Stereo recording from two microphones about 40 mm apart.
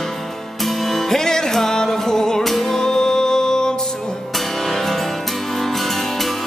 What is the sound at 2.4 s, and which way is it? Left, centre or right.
Music, centre.